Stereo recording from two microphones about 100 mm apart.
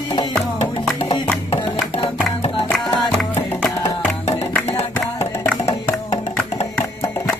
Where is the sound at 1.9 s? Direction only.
80° left.